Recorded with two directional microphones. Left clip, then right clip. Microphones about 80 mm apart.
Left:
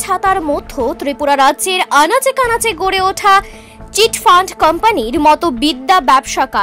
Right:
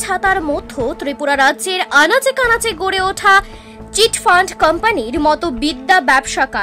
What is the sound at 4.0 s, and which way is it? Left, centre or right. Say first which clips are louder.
A woman's voice: left 2 dB; left.